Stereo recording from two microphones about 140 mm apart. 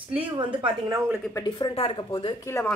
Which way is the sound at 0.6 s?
25° right (ahead or behind).